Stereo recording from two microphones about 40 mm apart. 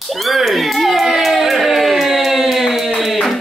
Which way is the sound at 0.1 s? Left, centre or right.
Centre.